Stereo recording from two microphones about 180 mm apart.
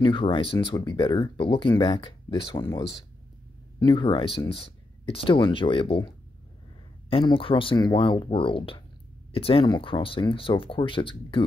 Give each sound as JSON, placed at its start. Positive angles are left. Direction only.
{"t": 0.0, "sound": "speech", "side_deg": 25}
{"t": 3.8, "sound": "speech", "side_deg": 25}